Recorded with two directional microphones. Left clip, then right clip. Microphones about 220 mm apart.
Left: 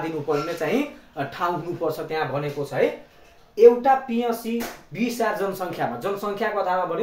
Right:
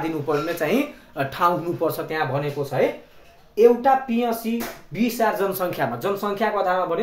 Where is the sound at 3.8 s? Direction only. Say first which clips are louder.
Right 1 dB; 35° right (ahead or behind).